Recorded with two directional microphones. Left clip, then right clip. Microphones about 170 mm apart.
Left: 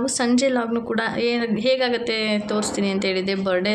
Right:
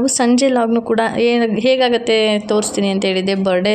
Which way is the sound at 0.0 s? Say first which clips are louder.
Right 6 dB; 35° right (ahead or behind).